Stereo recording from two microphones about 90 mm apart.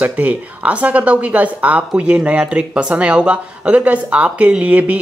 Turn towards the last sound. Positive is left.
turn(degrees=-15)  # may be behind; listen again after turning